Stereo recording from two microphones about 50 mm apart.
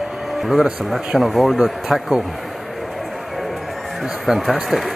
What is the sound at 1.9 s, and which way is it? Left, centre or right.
Speech, centre.